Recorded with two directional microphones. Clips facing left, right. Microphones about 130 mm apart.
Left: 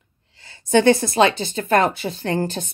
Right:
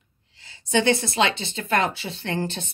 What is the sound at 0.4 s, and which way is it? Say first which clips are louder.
Speech: left 6 dB; 50° left (ahead or behind).